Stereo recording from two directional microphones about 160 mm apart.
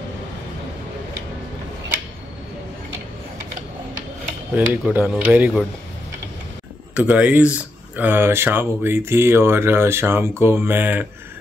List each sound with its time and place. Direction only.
4.6 s speech: 10° right (ahead or behind)
6.9 s speech: 10° right (ahead or behind)